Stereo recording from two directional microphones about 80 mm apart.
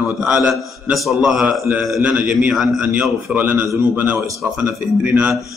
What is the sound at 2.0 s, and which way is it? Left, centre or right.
Speech, centre.